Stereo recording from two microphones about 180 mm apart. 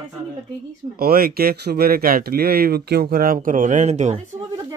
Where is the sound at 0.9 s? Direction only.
55° right (ahead or behind); by 4.2 s 40° right (ahead or behind).